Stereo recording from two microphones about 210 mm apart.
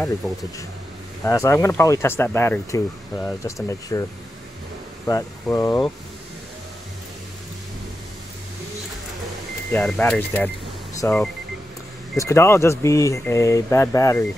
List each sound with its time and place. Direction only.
0.2 s speech: centre (ahead or behind)
1.2 s speech: 10° left (ahead or behind)
5.0 s speech: 10° left (ahead or behind)
9.7 s speech: 5° left (ahead or behind)